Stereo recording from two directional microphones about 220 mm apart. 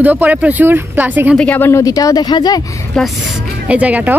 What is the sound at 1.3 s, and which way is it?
Speech, 5° left (ahead or behind).